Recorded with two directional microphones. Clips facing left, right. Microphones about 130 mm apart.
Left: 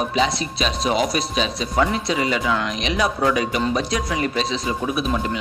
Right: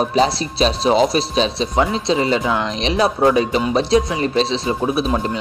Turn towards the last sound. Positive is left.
turn(degrees=-30)  # may be behind; listen again after turning